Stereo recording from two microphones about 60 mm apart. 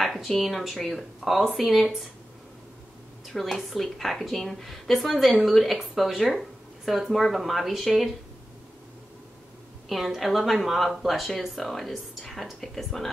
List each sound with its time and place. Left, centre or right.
0.0 s a sound: centre
0.4 s speech: centre
3.3 s speech: centre
9.8 s speech: centre